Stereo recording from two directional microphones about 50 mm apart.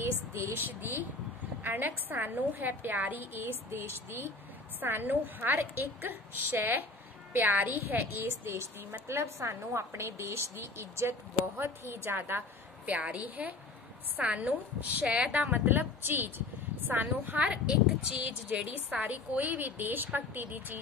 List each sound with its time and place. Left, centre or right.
0.6 s a woman's voice: right
4.7 s a woman's voice: right
9.0 s a woman's voice: right
11.5 s a woman's voice: right
12.9 s a woman's voice: right
15.6 s a woman's voice: right
17.5 s a woman's voice: right